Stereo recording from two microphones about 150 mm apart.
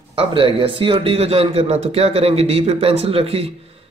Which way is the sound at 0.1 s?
35° right (ahead or behind).